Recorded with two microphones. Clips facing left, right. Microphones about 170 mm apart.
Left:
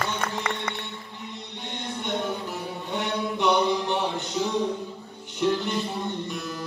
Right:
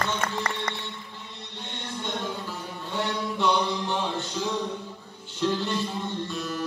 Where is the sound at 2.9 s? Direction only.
20° left (ahead or behind).